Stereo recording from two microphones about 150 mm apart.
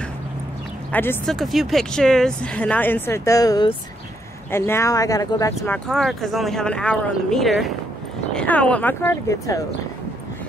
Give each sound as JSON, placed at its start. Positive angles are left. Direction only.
{"t": 0.9, "sound": "speech", "side_deg": 10}
{"t": 1.3, "sound": "speech", "side_deg": 0}
{"t": 5.7, "sound": "speech", "side_deg": 5}